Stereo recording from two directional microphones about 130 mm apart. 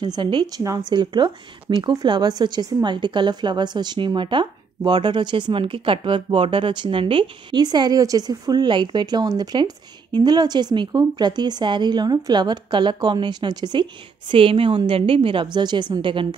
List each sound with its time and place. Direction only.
0.0 s speech: 35° right (ahead or behind)